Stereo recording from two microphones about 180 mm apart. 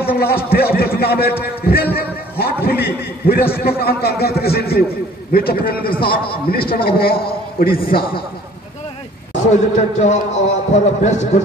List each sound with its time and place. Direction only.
0.0 s a sound: 60° left (ahead or behind)
0.5 s a man's voice: 60° left (ahead or behind)
9.3 s a man's voice: 40° left (ahead or behind)